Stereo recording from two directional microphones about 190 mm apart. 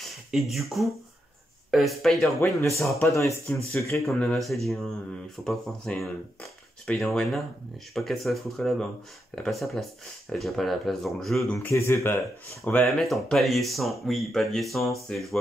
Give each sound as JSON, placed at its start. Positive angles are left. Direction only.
{"t": 0.3, "sound": "speech", "side_deg": 0}
{"t": 3.1, "sound": "speech", "side_deg": 15}
{"t": 4.0, "sound": "speech", "side_deg": 5}